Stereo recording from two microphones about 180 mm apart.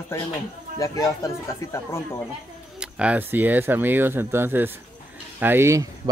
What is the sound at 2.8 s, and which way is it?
Speech, 5° right (ahead or behind).